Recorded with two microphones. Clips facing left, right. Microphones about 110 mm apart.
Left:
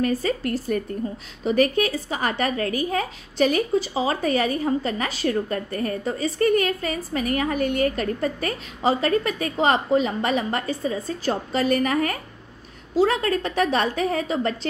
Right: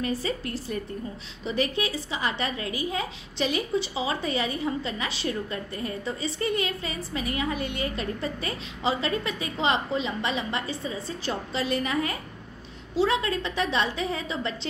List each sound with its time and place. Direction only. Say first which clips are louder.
0.0 s a woman's voice: left 6 dB; 50° left (ahead or behind)